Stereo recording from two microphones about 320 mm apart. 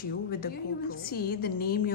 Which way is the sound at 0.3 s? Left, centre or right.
Left.